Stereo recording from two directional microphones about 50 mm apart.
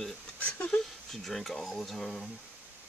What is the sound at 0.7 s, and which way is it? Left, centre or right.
Speech, centre.